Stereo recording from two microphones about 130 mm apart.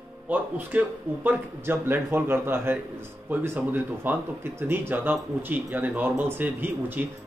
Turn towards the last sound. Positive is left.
turn(degrees=-15)  # may be behind; listen again after turning